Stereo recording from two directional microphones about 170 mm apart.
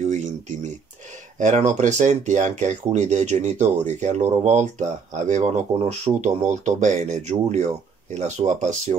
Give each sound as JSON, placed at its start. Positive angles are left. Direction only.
{"t": 1.4, "sound": "speech", "side_deg": -45}